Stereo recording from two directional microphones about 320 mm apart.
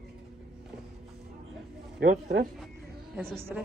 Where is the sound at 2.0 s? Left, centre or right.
Right.